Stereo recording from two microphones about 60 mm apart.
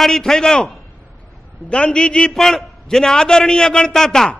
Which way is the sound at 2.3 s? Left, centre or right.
Centre.